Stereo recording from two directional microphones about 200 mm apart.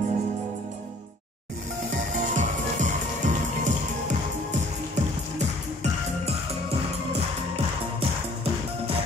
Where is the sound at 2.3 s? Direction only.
40° right (ahead or behind).